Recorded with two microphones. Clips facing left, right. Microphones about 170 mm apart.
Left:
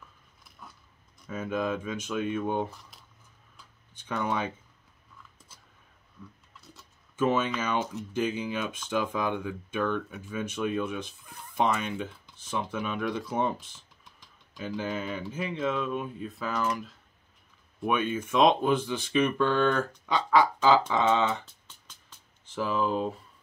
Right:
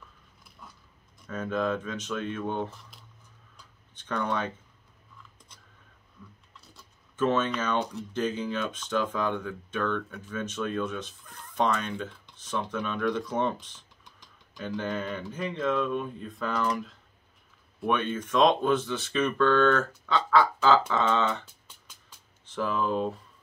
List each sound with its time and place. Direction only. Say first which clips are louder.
1.2 s speech: right 1 dB; 10° left (ahead or behind)
3.9 s speech: even; 10° left (ahead or behind)
7.2 s speech: even; 10° left (ahead or behind)